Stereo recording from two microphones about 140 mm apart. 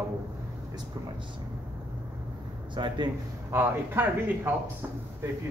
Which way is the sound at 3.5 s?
15° right (ahead or behind).